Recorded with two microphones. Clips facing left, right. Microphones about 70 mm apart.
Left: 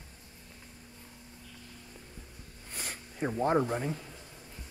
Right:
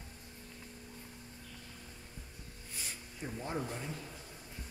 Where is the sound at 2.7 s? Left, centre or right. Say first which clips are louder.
Left 5 dB; left.